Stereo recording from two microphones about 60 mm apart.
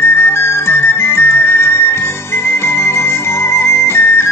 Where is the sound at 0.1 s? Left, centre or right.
Left.